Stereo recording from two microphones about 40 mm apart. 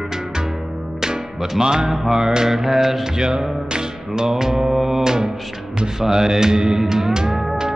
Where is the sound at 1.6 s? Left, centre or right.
Centre.